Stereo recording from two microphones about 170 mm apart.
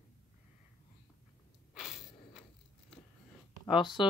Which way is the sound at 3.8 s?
25° left (ahead or behind).